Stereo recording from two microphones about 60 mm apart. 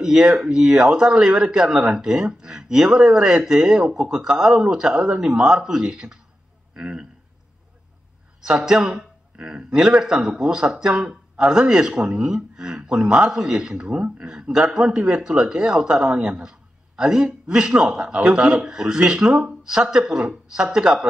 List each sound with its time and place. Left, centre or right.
0.0 s a man's voice: centre
8.5 s speech: centre